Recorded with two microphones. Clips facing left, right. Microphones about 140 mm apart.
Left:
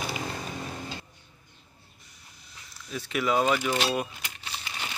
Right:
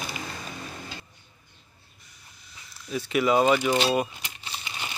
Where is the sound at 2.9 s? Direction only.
5° right (ahead or behind).